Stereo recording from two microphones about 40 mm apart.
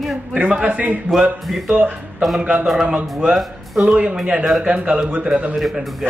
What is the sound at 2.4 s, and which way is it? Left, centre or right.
A man's voice, right.